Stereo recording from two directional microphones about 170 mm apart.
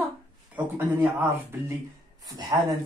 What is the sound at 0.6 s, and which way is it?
Speech, 15° right (ahead or behind).